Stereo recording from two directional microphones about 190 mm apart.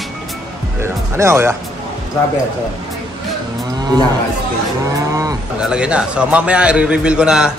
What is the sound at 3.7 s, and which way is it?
Cattle, 20° right (ahead or behind).